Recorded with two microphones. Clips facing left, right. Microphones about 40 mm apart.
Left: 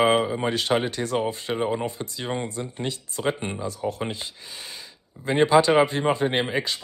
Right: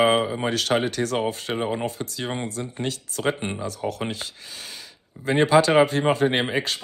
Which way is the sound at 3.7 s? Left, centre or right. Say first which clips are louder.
Left 3 dB; right.